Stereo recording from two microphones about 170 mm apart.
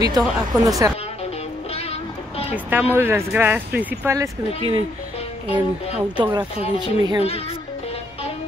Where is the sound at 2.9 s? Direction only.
15° right (ahead or behind).